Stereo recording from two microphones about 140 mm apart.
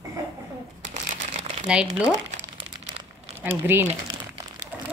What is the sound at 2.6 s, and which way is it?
Crumpling, 40° right (ahead or behind).